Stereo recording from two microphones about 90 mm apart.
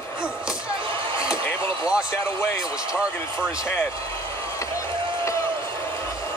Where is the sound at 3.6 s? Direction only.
25° left (ahead or behind).